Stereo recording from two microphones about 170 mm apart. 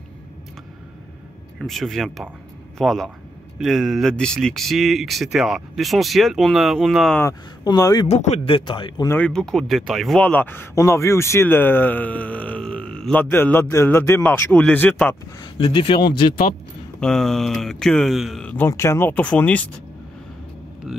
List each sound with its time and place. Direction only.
1.6 s speech: centre (ahead or behind)
7.6 s speech: 25° left (ahead or behind)
8.1 s a man's voice: 35° left (ahead or behind)
9.1 s a man's voice: 5° left (ahead or behind)
15.4 s speech: 30° left (ahead or behind)
17.0 s speech: centre (ahead or behind)